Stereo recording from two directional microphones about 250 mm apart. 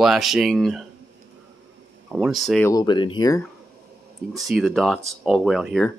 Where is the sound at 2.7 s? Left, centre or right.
Centre.